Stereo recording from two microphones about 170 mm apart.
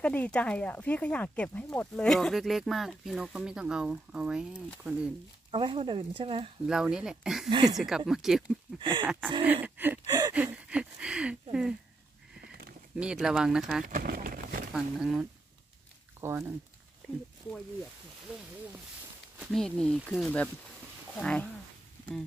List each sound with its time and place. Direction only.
0.0 s speech: 10° left (ahead or behind)
5.5 s speech: 30° right (ahead or behind)
6.6 s speech: 5° right (ahead or behind)
7.4 s speech: 25° right (ahead or behind)
8.1 s speech: centre (ahead or behind)
8.7 s speech: 30° right (ahead or behind)
9.0 s gasp: 5° right (ahead or behind)
10.3 s a sound: 5° right (ahead or behind)
12.4 s a sound: 65° right (ahead or behind)
12.9 s speech: 5° right (ahead or behind)
13.8 s speech: 55° right (ahead or behind)
14.7 s speech: centre (ahead or behind)
16.2 s gasp: 15° right (ahead or behind)
19.4 s speech: centre (ahead or behind)